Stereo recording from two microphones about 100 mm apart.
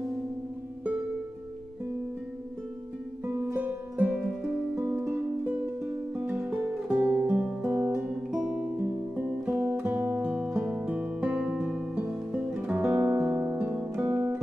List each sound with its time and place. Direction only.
3.5 s music: 15° right (ahead or behind)
14.0 s guitar: 20° right (ahead or behind)